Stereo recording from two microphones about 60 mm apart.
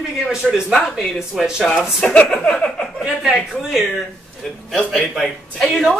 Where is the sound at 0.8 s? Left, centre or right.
Centre.